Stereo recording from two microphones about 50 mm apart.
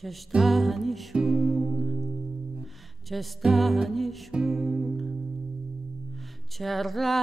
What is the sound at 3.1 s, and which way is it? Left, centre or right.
Music, centre.